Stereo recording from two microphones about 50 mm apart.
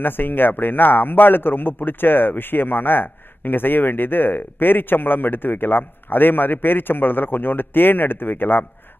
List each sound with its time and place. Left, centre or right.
0.0 s a man's voice: left